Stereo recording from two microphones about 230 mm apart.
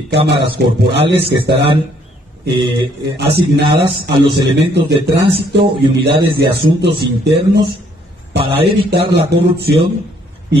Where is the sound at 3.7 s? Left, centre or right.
Right.